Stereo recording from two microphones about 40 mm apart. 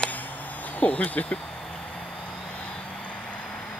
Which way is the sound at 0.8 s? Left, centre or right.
Left.